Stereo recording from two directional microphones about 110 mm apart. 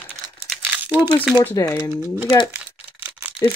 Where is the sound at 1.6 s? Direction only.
30° left (ahead or behind).